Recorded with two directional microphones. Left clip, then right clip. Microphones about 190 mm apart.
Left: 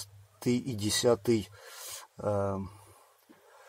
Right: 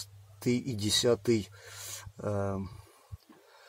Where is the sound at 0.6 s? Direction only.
50° right (ahead or behind).